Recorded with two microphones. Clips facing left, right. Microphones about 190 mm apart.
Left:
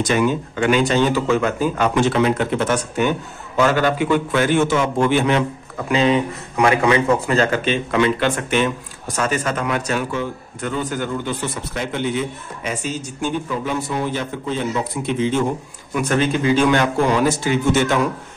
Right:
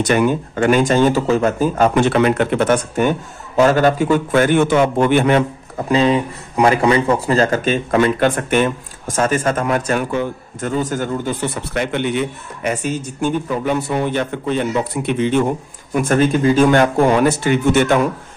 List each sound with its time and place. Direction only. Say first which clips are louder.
0.0 s a man's voice: right 3 dB; 55° right (ahead or behind)
2.0 s a man's voice: even; 60° right (ahead or behind)
5.9 s a man's voice: right 2 dB; 35° right (ahead or behind)
11.5 s a man's voice: right 4 dB; 60° right (ahead or behind)
15.9 s a man's voice: right 4 dB; 50° right (ahead or behind)